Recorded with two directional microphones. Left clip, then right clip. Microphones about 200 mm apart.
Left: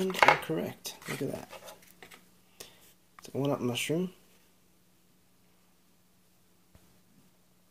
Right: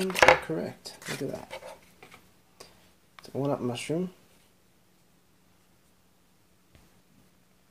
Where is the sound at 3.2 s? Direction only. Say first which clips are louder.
Right 1 dB; 15° left (ahead or behind).